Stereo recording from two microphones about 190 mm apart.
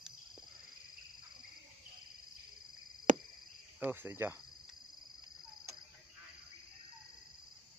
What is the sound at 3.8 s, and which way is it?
Speech, 10° right (ahead or behind).